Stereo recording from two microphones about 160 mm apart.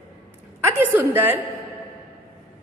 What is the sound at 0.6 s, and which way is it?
Speech, 15° right (ahead or behind).